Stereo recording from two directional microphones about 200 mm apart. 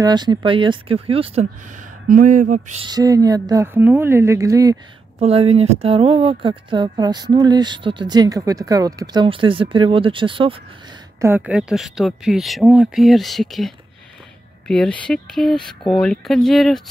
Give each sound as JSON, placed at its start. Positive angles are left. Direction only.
{"t": 0.0, "sound": "speech", "side_deg": -20}
{"t": 2.0, "sound": "speech", "side_deg": -45}
{"t": 2.8, "sound": "a woman's voice", "side_deg": -20}
{"t": 5.2, "sound": "speech", "side_deg": -30}
{"t": 11.1, "sound": "speech", "side_deg": -10}